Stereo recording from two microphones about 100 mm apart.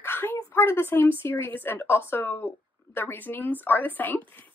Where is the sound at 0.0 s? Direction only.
25° left (ahead or behind).